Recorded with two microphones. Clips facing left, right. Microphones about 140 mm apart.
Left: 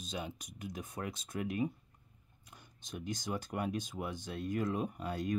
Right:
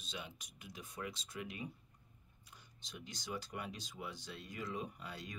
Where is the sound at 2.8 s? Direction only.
50° left (ahead or behind).